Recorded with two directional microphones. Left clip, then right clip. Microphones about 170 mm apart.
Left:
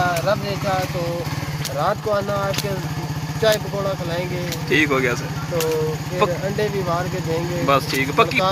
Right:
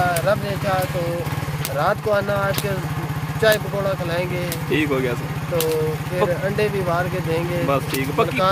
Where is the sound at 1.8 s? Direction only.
5° right (ahead or behind).